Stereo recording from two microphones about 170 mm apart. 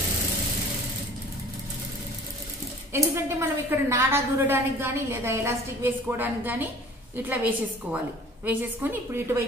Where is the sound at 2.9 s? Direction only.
15° right (ahead or behind).